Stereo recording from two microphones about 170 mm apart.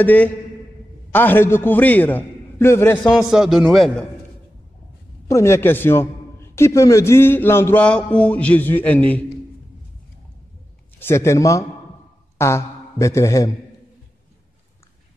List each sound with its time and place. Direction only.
0.0 s a man's voice: 10° left (ahead or behind)
3.2 s a man's voice: 5° right (ahead or behind)
5.3 s a man's voice: 15° left (ahead or behind)
11.0 s a man's voice: 15° left (ahead or behind)